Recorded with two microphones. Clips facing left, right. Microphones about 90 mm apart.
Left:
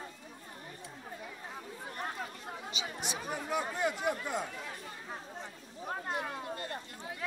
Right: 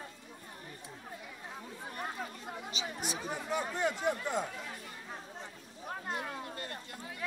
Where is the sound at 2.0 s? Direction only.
Centre (ahead or behind).